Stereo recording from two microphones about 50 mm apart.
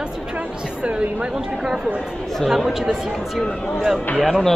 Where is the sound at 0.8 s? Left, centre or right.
Centre.